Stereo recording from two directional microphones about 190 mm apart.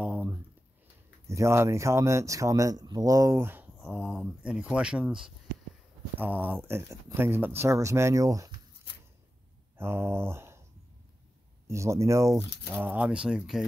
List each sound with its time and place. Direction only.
0.0 s a sound: 10° right (ahead or behind)
1.2 s speech: 15° right (ahead or behind)
3.8 s speech: centre (ahead or behind); by 8.5 s 15° right (ahead or behind)
9.8 s speech: 10° right (ahead or behind)
11.6 s speech: 15° right (ahead or behind)